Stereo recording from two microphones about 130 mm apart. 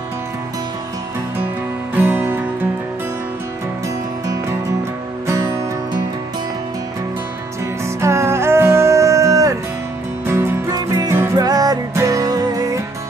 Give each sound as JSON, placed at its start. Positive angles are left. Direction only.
{"t": 2.0, "sound": "music", "side_deg": -15}
{"t": 5.2, "sound": "music", "side_deg": -20}
{"t": 7.8, "sound": "music", "side_deg": -20}